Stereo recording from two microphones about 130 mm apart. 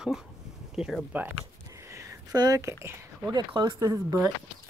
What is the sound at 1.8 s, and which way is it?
Speech, 25° right (ahead or behind).